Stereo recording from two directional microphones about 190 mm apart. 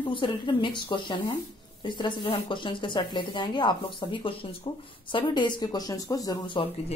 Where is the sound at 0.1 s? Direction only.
25° left (ahead or behind).